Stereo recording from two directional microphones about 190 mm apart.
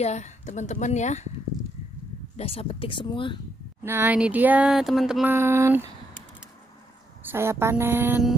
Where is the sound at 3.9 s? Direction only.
10° right (ahead or behind).